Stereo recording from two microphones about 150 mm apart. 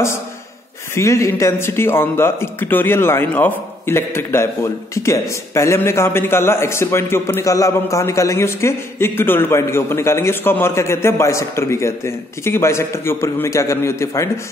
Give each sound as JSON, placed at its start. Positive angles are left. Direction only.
{"t": 0.9, "sound": "a man's voice", "side_deg": 20}